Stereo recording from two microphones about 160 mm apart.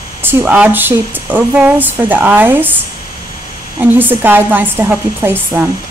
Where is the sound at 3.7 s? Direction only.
10° right (ahead or behind).